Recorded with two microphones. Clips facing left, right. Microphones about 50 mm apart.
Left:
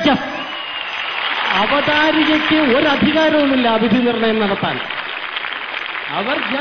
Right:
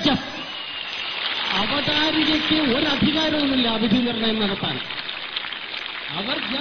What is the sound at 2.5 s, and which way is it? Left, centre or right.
Speech, left.